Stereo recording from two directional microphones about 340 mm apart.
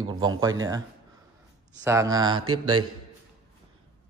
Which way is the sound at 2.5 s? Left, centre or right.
Right.